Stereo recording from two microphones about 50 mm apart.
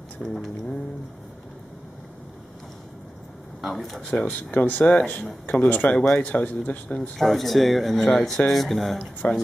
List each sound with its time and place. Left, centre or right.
0.2 s a sound: centre
3.6 s speech: centre
4.1 s speech: left
6.9 s speech: centre
9.2 s speech: left